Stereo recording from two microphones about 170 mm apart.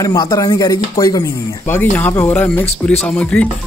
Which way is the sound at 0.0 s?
25° left (ahead or behind).